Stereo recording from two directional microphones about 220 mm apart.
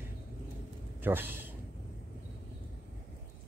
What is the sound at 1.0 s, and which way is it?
Speech, 10° right (ahead or behind).